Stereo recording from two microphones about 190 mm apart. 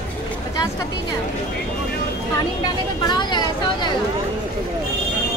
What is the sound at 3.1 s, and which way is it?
Speech, 25° left (ahead or behind).